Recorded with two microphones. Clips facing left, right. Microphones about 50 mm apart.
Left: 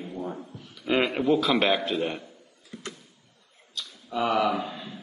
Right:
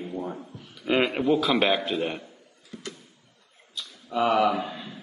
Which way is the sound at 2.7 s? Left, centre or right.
Right.